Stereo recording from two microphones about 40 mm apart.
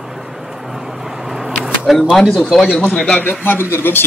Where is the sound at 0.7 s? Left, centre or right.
Centre.